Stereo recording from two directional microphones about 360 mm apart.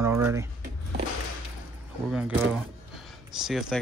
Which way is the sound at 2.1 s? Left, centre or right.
Centre.